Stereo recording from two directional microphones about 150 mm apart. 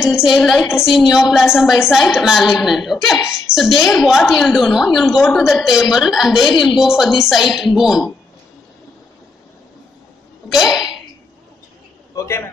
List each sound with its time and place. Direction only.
0.0 s a woman's voice: 5° right (ahead or behind)
10.5 s speech: centre (ahead or behind)
12.2 s a man's voice: 20° left (ahead or behind)